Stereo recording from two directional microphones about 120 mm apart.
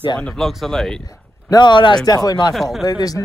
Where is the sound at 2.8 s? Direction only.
30° left (ahead or behind).